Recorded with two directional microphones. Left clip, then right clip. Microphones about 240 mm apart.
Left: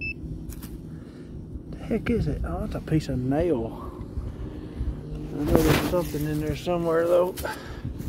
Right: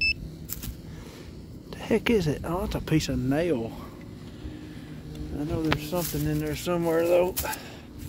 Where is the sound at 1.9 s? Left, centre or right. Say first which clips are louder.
Right 4 dB; right.